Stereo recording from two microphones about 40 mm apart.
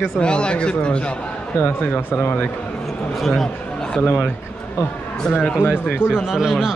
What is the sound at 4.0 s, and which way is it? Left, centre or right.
Speech, left.